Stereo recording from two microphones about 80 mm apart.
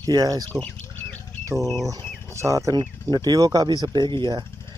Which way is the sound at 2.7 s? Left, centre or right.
Right.